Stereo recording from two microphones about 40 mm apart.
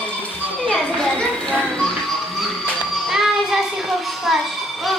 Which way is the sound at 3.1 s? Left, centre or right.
Centre.